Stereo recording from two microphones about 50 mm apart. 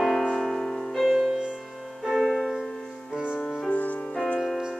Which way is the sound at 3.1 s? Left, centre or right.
Centre.